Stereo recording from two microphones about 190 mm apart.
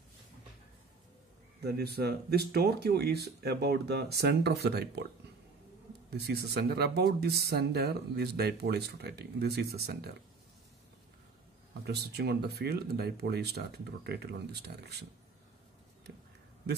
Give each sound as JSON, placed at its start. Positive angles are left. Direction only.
{"t": 1.6, "sound": "speech", "side_deg": -55}
{"t": 6.0, "sound": "speech", "side_deg": -60}
{"t": 11.8, "sound": "speech", "side_deg": -60}